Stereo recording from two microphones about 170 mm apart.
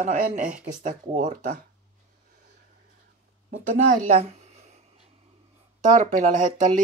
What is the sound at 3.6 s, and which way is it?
Speech, 50° right (ahead or behind).